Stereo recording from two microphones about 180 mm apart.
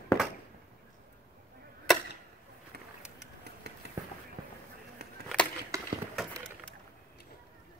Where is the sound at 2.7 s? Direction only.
65° right (ahead or behind).